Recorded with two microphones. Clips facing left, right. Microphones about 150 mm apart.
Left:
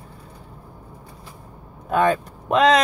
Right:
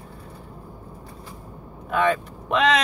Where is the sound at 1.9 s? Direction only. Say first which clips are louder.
Left 3 dB; 40° left (ahead or behind).